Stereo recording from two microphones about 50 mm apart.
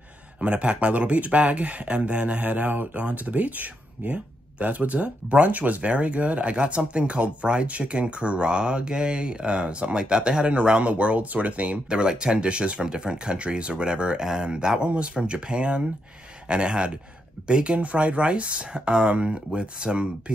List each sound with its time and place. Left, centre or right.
0.4 s speech: right